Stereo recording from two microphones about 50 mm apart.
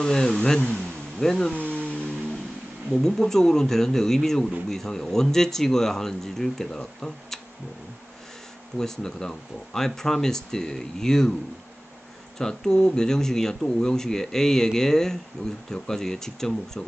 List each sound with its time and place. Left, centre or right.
0.0 s speech: centre
1.5 s a sound: left
2.9 s speech: centre
8.7 s speech: centre
12.4 s speech: centre
15.4 s speech: left
15.7 s speech: centre